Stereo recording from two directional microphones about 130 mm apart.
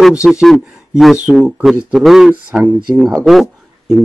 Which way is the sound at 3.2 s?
Centre (ahead or behind).